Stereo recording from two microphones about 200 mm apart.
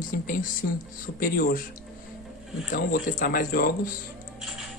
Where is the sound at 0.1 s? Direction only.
45° left (ahead or behind).